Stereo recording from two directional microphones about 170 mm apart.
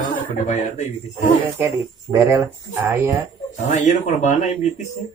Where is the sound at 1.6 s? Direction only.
15° right (ahead or behind).